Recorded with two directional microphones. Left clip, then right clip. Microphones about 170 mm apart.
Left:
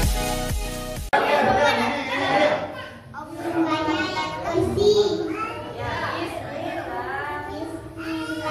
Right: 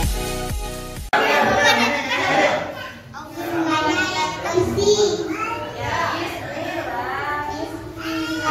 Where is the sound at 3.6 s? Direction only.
Centre (ahead or behind).